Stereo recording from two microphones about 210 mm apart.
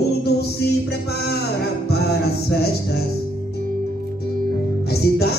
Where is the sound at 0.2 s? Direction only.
50° left (ahead or behind).